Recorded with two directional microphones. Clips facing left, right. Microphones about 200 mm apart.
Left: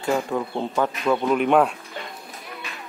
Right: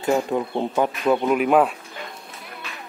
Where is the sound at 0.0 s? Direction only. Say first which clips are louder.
Right 2 dB; 20° right (ahead or behind); by 1.7 s 5° right (ahead or behind).